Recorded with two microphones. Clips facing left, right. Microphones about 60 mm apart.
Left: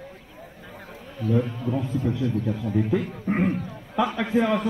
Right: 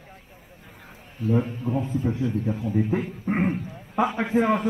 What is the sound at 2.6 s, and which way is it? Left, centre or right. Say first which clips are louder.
Speech: right 1 dB; left.